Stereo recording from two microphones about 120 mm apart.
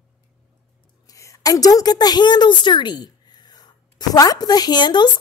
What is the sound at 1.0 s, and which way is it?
A woman's voice, 25° left (ahead or behind).